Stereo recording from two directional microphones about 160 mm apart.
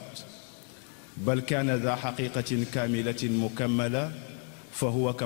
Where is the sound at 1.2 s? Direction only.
10° left (ahead or behind).